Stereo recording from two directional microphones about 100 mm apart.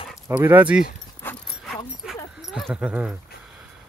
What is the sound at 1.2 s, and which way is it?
Dog, 20° left (ahead or behind).